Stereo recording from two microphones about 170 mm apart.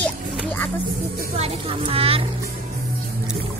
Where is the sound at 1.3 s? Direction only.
35° right (ahead or behind).